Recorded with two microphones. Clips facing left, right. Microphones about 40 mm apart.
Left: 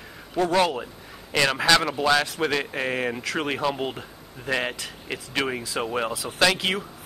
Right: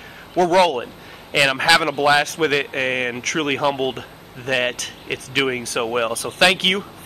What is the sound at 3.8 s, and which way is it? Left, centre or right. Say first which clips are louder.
Speech: right 6 dB; right.